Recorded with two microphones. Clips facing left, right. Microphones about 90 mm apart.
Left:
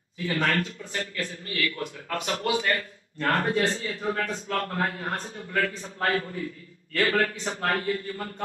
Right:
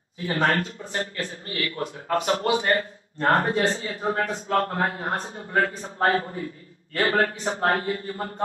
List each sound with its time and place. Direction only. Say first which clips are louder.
0.2 s speech: right 3 dB; 35° right (ahead or behind)